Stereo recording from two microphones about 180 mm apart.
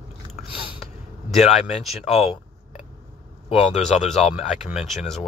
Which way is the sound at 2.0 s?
35° left (ahead or behind).